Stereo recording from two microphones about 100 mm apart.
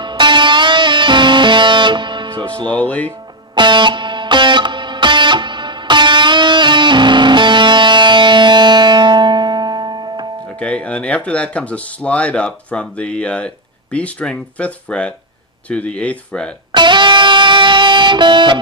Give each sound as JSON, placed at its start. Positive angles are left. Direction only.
{"t": 0.0, "sound": "music", "side_deg": -50}
{"t": 2.7, "sound": "speech", "side_deg": 15}
{"t": 3.5, "sound": "music", "side_deg": -50}
{"t": 10.6, "sound": "speech", "side_deg": 10}
{"t": 16.7, "sound": "music", "side_deg": -50}